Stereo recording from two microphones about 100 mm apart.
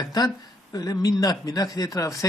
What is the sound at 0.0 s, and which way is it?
Speech, 40° left (ahead or behind).